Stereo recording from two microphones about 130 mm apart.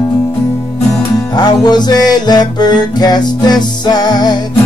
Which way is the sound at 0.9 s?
30° left (ahead or behind).